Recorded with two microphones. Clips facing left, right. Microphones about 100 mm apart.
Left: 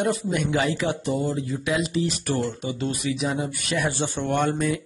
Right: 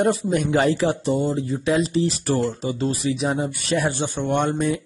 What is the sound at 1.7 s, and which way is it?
Speech, 35° right (ahead or behind).